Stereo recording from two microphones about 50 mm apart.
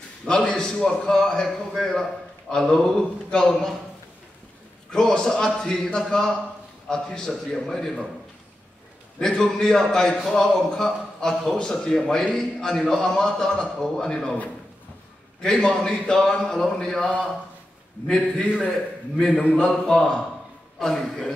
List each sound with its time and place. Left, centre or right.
0.2 s a man's voice: centre
4.9 s a man's voice: centre
9.2 s a man's voice: centre
15.4 s a man's voice: centre